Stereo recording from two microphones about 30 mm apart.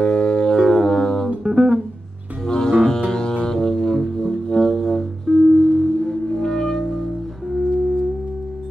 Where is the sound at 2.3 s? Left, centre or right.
Right.